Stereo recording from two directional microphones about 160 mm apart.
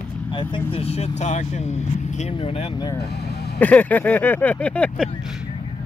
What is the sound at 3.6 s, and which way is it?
Vehicle, 10° left (ahead or behind).